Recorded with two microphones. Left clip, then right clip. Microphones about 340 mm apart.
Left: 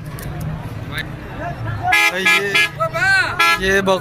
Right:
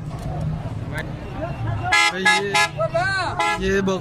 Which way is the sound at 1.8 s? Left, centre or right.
Right.